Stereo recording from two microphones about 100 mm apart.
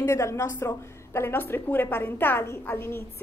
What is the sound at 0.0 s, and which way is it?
A woman's voice, 30° left (ahead or behind).